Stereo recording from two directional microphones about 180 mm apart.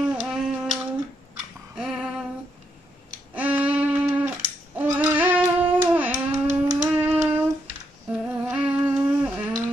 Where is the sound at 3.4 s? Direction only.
10° right (ahead or behind).